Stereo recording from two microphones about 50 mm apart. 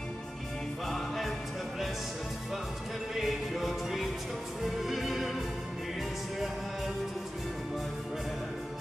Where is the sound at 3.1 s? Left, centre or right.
Centre.